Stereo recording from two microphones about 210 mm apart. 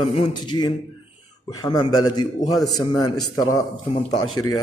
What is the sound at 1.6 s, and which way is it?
Speech, 20° left (ahead or behind).